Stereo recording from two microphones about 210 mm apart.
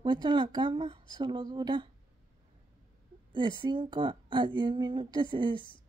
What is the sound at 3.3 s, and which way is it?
Speech, 20° right (ahead or behind).